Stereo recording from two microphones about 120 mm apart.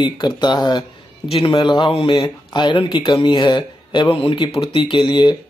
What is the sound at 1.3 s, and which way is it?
Speech, 50° left (ahead or behind).